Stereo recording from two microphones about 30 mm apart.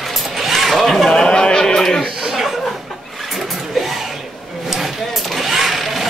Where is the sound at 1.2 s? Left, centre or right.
Left.